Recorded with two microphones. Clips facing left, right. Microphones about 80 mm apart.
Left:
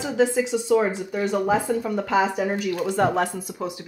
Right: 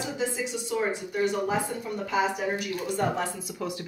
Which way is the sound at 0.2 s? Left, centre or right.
Left.